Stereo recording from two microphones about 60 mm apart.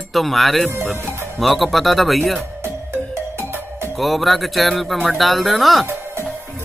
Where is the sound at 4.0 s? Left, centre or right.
Centre.